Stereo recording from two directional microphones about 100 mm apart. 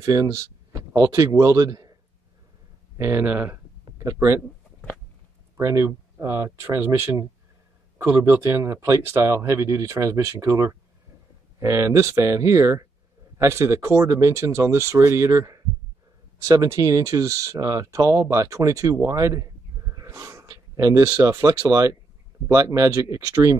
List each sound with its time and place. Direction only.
0.0 s a man's voice: 35° right (ahead or behind)
3.0 s speech: 20° right (ahead or behind)
4.0 s speech: 30° right (ahead or behind)
5.6 s speech: 35° right (ahead or behind)